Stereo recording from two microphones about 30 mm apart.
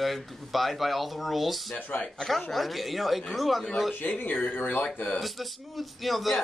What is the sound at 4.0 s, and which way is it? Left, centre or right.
Speech, left.